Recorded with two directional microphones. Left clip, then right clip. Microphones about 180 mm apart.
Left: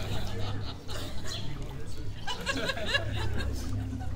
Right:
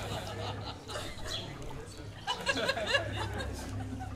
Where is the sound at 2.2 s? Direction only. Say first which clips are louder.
Right 1 dB; 25° right (ahead or behind).